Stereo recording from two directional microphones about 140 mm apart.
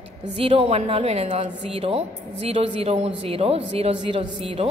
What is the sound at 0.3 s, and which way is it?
A woman's voice, 40° right (ahead or behind).